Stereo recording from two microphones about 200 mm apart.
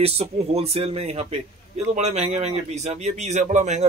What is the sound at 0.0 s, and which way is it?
Speech, 30° right (ahead or behind).